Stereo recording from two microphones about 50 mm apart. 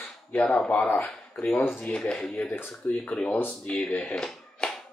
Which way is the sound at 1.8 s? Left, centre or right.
Left.